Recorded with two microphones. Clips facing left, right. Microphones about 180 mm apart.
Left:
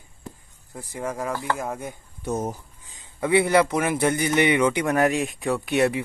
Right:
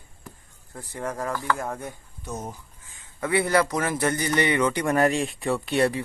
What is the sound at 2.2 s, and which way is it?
Speech, 55° left (ahead or behind).